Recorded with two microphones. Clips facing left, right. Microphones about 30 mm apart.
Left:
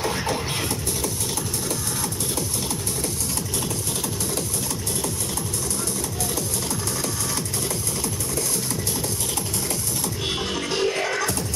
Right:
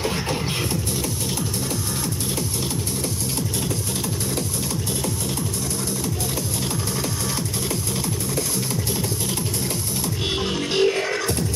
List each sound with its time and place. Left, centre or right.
0.0 s scratching: centre
10.0 s music: centre
11.1 s music: centre